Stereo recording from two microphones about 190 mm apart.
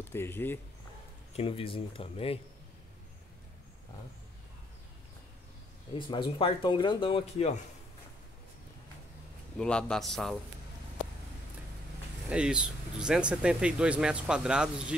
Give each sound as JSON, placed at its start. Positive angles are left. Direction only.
{"t": 0.1, "sound": "speech", "side_deg": 10}
{"t": 1.3, "sound": "speech", "side_deg": 30}
{"t": 5.9, "sound": "speech", "side_deg": 25}
{"t": 9.6, "sound": "speech", "side_deg": 5}
{"t": 12.3, "sound": "speech", "side_deg": -5}